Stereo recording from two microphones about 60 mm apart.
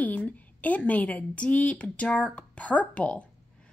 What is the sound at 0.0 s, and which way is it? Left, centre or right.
A woman's voice, left.